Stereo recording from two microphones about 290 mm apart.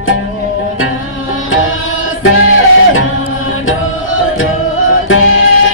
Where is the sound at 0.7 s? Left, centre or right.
Left.